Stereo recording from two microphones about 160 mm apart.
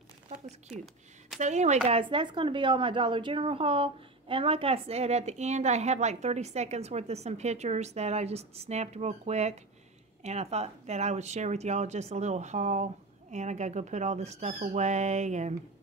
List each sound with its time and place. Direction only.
1.4 s speech: 45° right (ahead or behind)
1.9 s speech: 35° right (ahead or behind)